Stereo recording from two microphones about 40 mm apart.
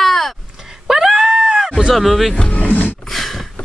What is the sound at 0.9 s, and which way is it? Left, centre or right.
Screaming, centre.